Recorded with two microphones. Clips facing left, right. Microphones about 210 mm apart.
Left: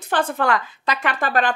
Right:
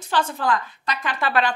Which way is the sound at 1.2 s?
50° left (ahead or behind).